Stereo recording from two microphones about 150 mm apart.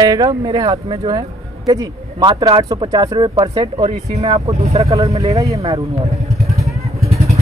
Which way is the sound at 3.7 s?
45° right (ahead or behind).